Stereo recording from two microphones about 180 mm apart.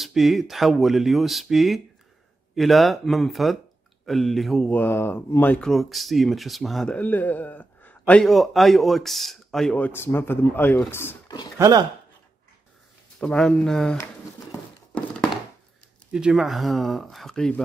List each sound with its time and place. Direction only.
0.0 s speech: centre (ahead or behind); by 11.4 s 15° left (ahead or behind)
11.5 s speech: 20° right (ahead or behind)
13.2 s speech: 5° left (ahead or behind)
16.1 s speech: 5° right (ahead or behind)